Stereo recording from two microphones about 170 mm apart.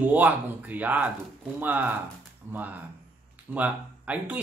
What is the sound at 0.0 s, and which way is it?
Speech, 10° right (ahead or behind).